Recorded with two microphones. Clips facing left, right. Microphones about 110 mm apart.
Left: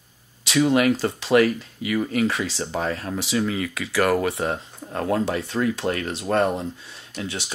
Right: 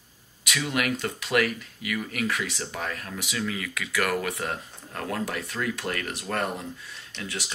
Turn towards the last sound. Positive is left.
turn(degrees=25)  # may be behind; listen again after turning